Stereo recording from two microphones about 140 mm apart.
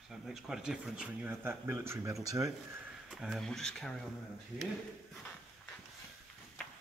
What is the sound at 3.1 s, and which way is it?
Speech, 5° right (ahead or behind).